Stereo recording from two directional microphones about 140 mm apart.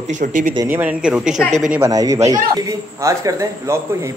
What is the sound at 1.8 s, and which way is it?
A man's voice, 25° right (ahead or behind).